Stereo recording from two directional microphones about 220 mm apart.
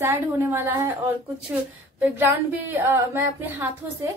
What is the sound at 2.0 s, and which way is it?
A woman's voice, 10° right (ahead or behind).